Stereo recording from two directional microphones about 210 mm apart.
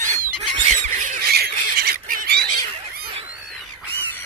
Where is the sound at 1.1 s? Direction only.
50° right (ahead or behind).